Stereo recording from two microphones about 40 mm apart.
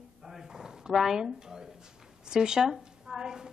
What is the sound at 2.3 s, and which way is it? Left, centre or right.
A woman's voice, centre.